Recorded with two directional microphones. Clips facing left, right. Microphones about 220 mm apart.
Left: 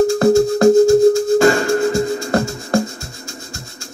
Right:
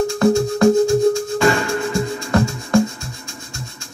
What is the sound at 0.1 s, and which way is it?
Music, 40° left (ahead or behind).